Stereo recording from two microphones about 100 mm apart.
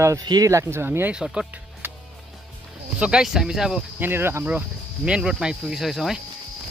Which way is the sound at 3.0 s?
10° right (ahead or behind).